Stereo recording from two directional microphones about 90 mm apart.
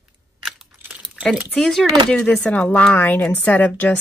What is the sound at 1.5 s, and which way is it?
Speech, 5° left (ahead or behind).